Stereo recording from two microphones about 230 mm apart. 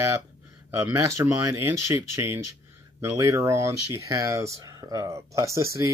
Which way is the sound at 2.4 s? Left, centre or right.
Right.